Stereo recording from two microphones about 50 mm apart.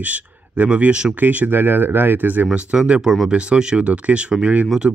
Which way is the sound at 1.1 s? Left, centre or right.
Right.